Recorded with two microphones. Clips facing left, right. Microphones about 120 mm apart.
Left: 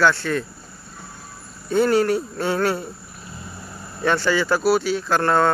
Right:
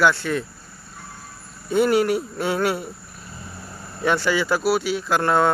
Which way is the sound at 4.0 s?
10° right (ahead or behind).